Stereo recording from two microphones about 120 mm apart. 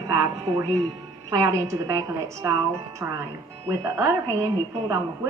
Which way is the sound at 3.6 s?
25° right (ahead or behind).